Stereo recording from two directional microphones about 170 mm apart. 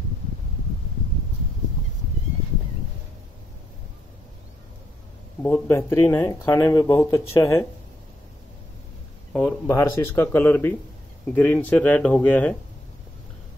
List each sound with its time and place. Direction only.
5.4 s speech: 15° left (ahead or behind)
9.3 s speech: 5° left (ahead or behind)
9.7 s speech: 15° left (ahead or behind)